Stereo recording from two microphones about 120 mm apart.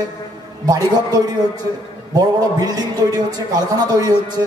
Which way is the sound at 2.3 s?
35° right (ahead or behind).